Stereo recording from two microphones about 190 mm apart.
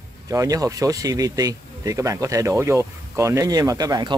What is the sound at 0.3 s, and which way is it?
Speech, 15° right (ahead or behind).